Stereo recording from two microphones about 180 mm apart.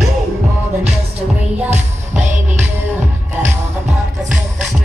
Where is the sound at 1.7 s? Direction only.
40° right (ahead or behind).